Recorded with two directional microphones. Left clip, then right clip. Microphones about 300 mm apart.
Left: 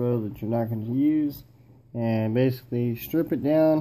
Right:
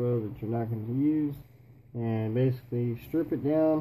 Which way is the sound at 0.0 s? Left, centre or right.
Left.